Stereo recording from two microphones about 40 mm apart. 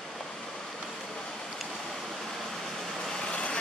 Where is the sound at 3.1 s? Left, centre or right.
Left.